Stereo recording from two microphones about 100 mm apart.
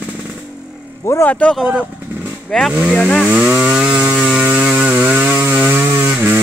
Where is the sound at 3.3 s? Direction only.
10° right (ahead or behind).